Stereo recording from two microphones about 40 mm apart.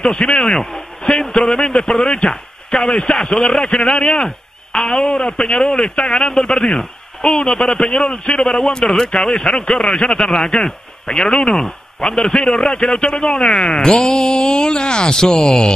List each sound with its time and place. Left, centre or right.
0.0 s speech: centre